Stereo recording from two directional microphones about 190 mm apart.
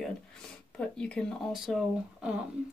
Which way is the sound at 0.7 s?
5° left (ahead or behind).